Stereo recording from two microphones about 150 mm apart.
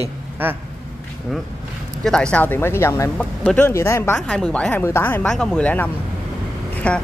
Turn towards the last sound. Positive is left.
turn(degrees=10)  # may be behind; listen again after turning